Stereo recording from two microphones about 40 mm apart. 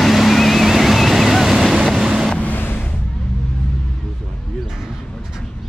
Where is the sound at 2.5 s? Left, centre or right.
Left.